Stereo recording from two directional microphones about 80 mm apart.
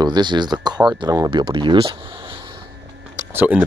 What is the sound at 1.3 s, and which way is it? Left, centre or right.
Speech, right.